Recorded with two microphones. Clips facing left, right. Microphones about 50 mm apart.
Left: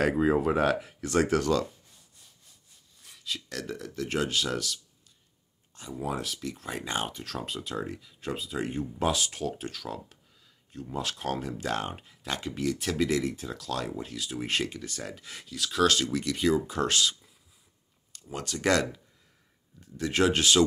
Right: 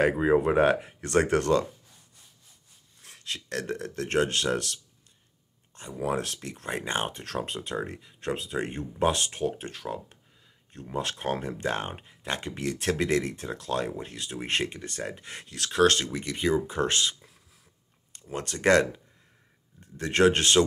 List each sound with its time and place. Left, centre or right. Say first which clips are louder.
0.0 s speech: right 2 dB; centre
0.5 s speech: right 3 dB; right
3.0 s speech: even; right
5.8 s speech: right 4 dB; right
18.3 s speech: right 4 dB; right